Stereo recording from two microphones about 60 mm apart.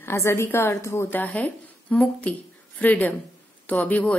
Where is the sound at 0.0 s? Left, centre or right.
Left.